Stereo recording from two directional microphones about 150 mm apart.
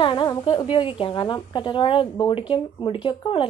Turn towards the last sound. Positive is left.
turn(degrees=35)  # may be behind; listen again after turning